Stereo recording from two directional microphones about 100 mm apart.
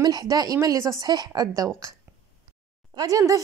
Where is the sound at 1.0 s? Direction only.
45° right (ahead or behind).